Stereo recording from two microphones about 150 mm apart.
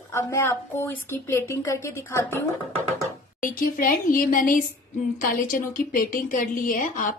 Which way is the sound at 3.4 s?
65° left (ahead or behind).